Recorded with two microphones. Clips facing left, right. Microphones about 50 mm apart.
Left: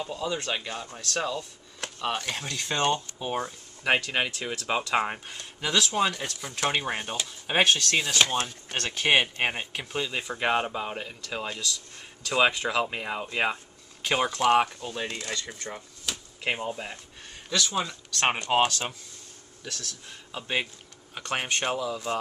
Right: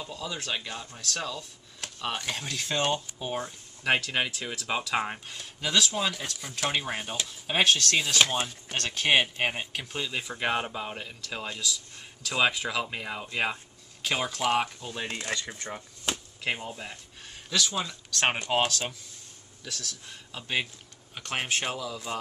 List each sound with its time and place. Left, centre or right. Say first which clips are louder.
0.0 s speech: left 5 dB; centre
15.0 s speech: right 1 dB; centre
16.1 s chop: right 3 dB; right
16.4 s speech: left 3 dB; centre
17.5 s speech: left 2 dB; centre